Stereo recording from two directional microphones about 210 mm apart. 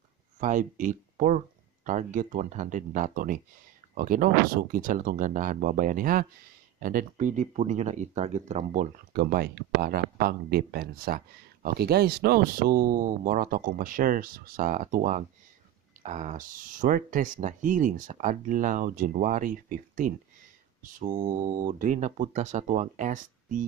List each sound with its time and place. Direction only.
0.4 s speech: 40° right (ahead or behind)